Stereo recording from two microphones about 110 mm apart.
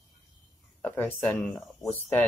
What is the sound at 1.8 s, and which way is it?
Speech, 20° left (ahead or behind).